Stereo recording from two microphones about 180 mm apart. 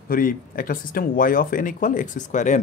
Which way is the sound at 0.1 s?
50° left (ahead or behind).